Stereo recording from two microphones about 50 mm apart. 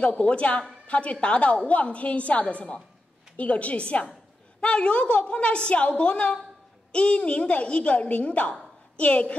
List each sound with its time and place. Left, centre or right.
0.0 s a woman's voice: left